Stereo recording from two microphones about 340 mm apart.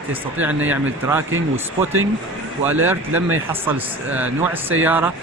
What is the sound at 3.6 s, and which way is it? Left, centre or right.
Speech, centre.